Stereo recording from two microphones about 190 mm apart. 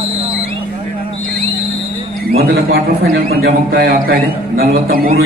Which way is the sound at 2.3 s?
55° right (ahead or behind).